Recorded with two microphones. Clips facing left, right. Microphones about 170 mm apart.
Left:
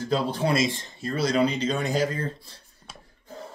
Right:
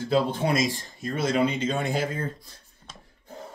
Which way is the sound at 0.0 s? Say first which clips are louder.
Right 1 dB; 40° left (ahead or behind).